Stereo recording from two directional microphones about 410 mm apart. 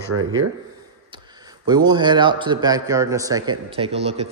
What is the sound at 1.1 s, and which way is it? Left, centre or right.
A man's voice, centre.